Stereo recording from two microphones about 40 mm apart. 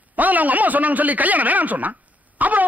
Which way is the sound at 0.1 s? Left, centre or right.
Right.